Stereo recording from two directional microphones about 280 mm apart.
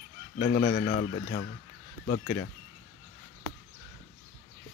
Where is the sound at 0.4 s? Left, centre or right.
Left.